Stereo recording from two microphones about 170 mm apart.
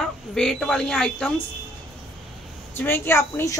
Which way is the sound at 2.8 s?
15° left (ahead or behind).